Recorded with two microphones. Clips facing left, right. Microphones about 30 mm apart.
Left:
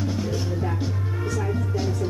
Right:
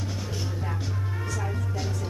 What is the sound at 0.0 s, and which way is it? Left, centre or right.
Music, centre.